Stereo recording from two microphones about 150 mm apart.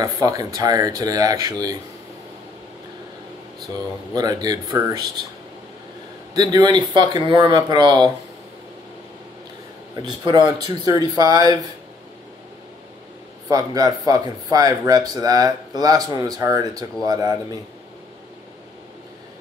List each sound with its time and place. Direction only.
0.0 s speech: 25° right (ahead or behind)
4.1 s speech: 25° right (ahead or behind)
6.3 s speech: 25° right (ahead or behind)
10.0 s speech: 30° right (ahead or behind)
13.5 s speech: 25° right (ahead or behind)